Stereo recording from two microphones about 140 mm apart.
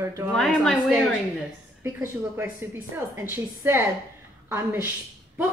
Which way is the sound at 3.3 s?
15° right (ahead or behind).